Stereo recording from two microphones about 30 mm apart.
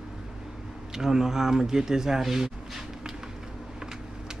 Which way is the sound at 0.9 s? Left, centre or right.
Centre.